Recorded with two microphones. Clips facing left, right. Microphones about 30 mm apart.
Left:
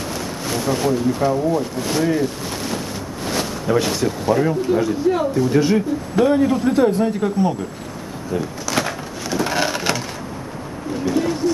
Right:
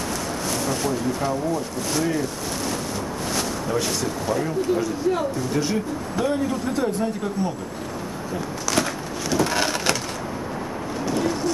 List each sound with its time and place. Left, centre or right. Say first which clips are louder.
0.5 s speech: left 6 dB; centre
9.5 s crushing: left 2 dB; centre
11.1 s a sound: left 5 dB; centre